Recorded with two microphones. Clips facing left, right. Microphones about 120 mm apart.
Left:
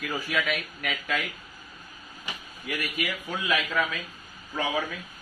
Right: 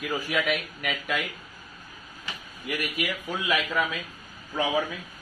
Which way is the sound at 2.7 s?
10° right (ahead or behind).